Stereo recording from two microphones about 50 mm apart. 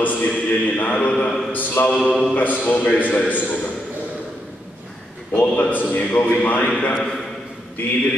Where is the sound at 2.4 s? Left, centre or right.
Left.